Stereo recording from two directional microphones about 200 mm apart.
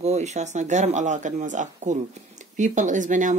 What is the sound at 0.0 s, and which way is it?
Speech, 35° right (ahead or behind).